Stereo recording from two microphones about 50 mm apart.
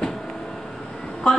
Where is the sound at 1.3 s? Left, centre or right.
Centre.